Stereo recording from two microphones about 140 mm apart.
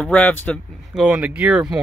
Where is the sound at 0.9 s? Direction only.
5° right (ahead or behind).